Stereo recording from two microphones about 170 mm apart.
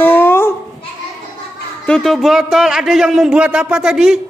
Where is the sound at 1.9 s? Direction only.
Centre (ahead or behind).